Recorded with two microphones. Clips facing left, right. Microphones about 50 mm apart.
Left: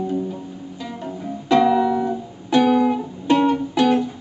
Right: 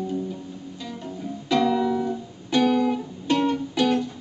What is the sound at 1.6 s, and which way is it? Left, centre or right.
Music, centre.